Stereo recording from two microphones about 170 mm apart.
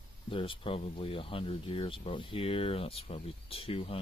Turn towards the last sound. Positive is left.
turn(degrees=35)  # may be behind; listen again after turning